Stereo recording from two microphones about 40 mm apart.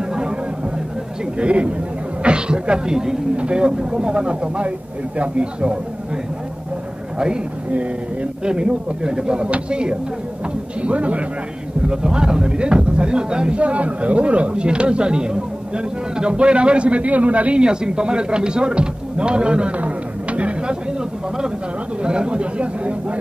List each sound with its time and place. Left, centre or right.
1.4 s speech: right
8.5 s speech: right
11.9 s speech: centre
19.8 s a sound: right
22.0 s speech: right